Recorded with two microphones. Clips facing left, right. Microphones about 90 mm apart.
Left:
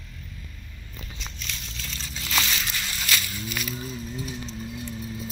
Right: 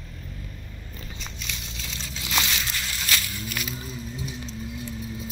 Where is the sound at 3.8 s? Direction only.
Centre (ahead or behind).